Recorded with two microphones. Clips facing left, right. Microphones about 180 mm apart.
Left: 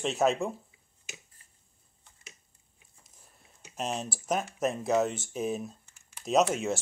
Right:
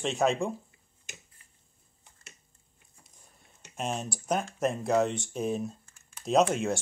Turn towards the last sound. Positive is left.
turn(degrees=0)  # may be behind; listen again after turning